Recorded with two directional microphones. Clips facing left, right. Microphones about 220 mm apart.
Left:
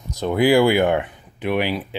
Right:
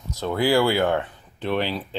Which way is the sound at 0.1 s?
15° left (ahead or behind).